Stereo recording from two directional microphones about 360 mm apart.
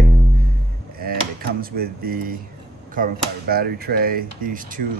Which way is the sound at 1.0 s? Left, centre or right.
Right.